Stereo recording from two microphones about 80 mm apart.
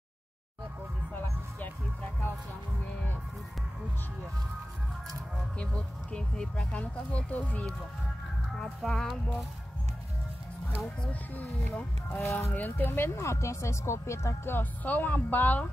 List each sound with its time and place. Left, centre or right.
5.6 s speech: centre
8.5 s speech: centre
11.0 s speech: left
12.3 s speech: left
12.5 s speech: left